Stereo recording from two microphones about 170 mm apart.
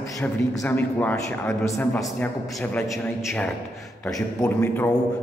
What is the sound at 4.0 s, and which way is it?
Speech, 15° left (ahead or behind).